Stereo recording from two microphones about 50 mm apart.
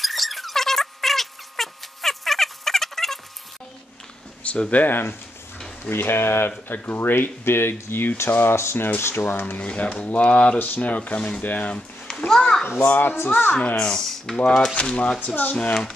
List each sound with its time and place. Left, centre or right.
0.0 s cat: centre
4.4 s speech: left
5.9 s speech: left
6.7 s speech: left
9.6 s speech: left
10.6 s speech: left
12.3 s a sound: centre
12.8 s speech: left
13.7 s speech: centre
14.8 s speech: left
15.2 s speech: left